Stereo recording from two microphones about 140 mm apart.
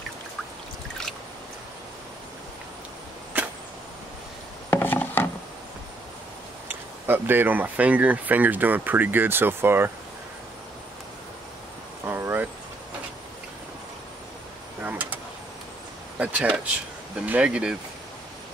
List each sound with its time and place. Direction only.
3.3 s arrow: 15° right (ahead or behind)
4.6 s wood: 15° left (ahead or behind)
7.1 s speech: 15° right (ahead or behind)
12.1 s vehicle: 15° right (ahead or behind)
14.8 s mechanisms: 10° right (ahead or behind)
16.2 s speech: 10° right (ahead or behind)